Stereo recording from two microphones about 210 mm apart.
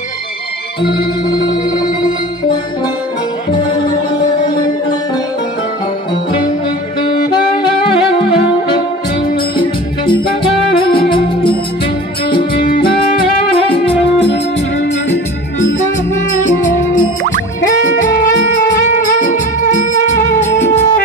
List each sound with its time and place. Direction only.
7.2 s music: 25° left (ahead or behind)
9.6 s music: 25° left (ahead or behind)
12.3 s music: 25° left (ahead or behind)
18.0 s music: 45° left (ahead or behind)
20.4 s music: 10° left (ahead or behind)